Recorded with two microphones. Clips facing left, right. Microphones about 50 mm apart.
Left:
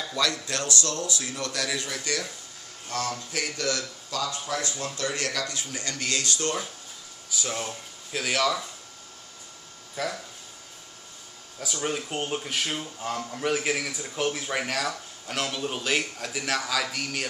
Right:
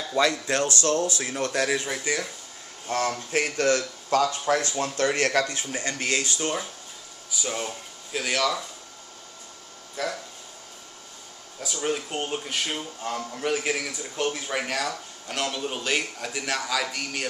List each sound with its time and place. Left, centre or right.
0.1 s speech: right
2.9 s speech: right; by 6.7 s centre
7.2 s speech: centre
10.0 s speech: centre
11.6 s speech: centre